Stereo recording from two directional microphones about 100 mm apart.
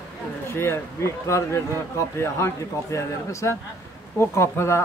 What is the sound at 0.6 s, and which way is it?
A man's voice, 25° left (ahead or behind).